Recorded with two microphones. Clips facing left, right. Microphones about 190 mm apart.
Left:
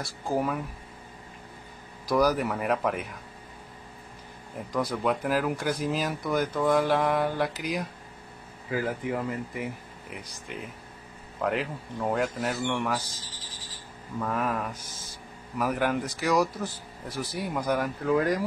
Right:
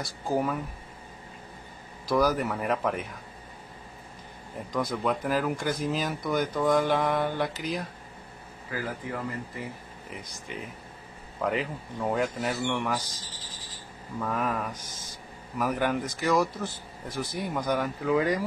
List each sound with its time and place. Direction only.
0.3 s speech: centre (ahead or behind)
2.0 s speech: 10° left (ahead or behind)
4.7 s speech: centre (ahead or behind)
8.6 s speech: 20° left (ahead or behind)
10.0 s speech: centre (ahead or behind)
14.2 s speech: centre (ahead or behind)